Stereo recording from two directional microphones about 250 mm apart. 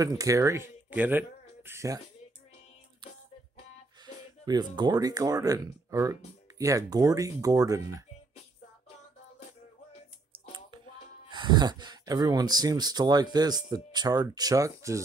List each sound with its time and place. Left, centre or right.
0.0 s speech: centre
4.0 s speech: centre
11.2 s speech: centre